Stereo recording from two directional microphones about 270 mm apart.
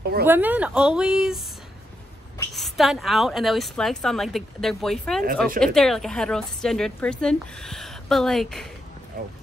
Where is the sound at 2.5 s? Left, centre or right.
Centre.